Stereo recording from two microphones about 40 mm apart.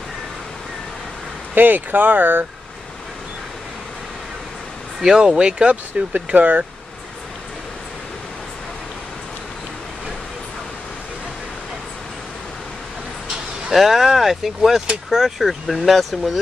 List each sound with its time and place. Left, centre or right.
1.5 s speech: right
5.2 s speech: right
6.1 s speech: right
13.7 s speech: centre